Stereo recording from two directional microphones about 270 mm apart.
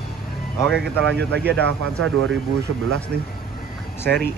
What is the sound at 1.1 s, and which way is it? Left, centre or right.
Speech, right.